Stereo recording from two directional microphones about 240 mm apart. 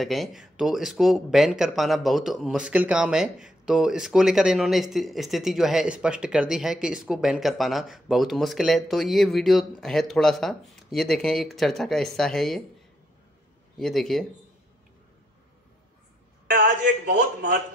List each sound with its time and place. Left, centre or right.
0.0 s speech: centre
13.7 s speech: centre
16.6 s a man's voice: right